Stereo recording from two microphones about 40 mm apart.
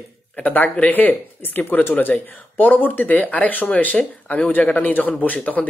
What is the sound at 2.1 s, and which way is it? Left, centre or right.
A man's voice, left.